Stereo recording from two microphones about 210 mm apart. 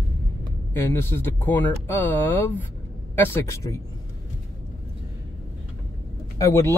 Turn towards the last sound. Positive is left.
turn(degrees=15)  # may be behind; listen again after turning